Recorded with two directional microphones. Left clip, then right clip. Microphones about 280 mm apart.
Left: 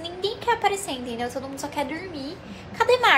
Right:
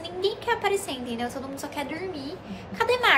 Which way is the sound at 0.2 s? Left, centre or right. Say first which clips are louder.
Left 2 dB; centre.